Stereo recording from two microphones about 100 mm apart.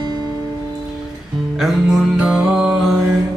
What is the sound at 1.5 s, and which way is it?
Mantra, 5° right (ahead or behind).